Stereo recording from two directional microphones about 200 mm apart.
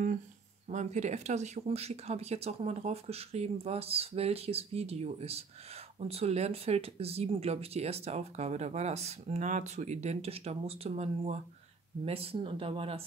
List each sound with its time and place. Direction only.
0.7 s speech: 35° right (ahead or behind)